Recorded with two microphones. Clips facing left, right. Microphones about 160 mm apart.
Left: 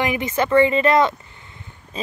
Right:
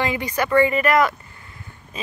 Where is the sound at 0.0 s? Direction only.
20° left (ahead or behind).